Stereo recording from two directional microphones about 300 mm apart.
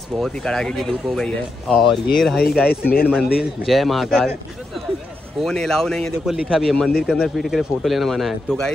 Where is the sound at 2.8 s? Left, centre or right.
Left.